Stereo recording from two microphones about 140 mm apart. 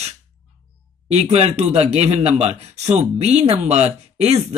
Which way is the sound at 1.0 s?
50° right (ahead or behind).